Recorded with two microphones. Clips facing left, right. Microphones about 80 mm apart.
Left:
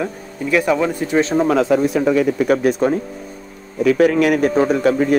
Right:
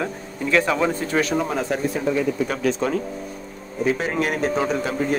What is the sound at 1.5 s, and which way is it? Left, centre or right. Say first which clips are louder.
Speech: left 9 dB; left.